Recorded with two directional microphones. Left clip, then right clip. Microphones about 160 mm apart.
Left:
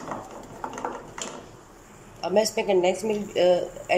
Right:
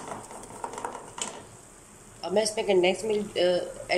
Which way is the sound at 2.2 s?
10° left (ahead or behind).